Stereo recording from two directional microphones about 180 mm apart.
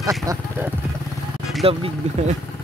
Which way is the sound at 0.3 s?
20° right (ahead or behind).